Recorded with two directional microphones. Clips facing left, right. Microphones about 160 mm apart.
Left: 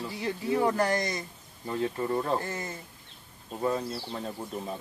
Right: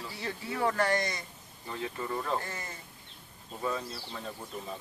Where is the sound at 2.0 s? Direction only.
30° left (ahead or behind).